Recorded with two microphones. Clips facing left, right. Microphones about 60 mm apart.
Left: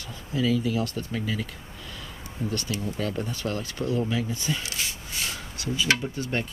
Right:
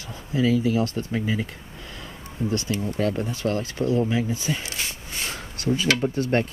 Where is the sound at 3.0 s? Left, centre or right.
Right.